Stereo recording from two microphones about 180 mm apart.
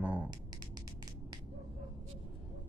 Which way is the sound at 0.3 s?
25° right (ahead or behind).